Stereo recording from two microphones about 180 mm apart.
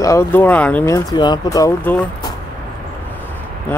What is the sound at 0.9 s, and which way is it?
Speech, 20° left (ahead or behind).